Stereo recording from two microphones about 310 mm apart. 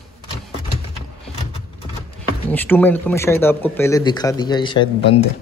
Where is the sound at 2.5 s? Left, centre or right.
Centre.